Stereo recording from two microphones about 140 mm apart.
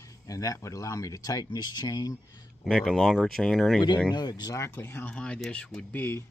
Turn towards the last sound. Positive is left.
turn(degrees=15)  # may be behind; listen again after turning